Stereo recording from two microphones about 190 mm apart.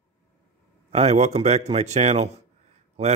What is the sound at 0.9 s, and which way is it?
Speech, 35° right (ahead or behind).